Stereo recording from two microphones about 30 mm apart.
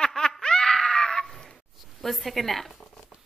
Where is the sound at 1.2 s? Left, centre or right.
Centre.